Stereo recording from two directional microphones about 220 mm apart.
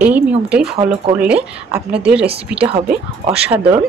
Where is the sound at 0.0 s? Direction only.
5° right (ahead or behind).